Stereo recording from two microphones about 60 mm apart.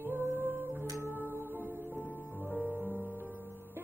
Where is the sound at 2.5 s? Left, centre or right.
Left.